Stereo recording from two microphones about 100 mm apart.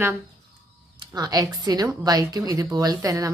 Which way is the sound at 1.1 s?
40° right (ahead or behind).